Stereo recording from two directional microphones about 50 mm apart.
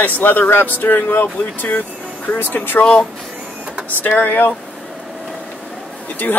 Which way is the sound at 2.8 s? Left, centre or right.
Left.